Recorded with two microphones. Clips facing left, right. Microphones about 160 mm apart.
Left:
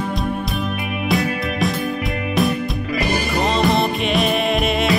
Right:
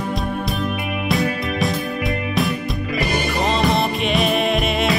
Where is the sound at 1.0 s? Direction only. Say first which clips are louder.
Left 1 dB; centre (ahead or behind).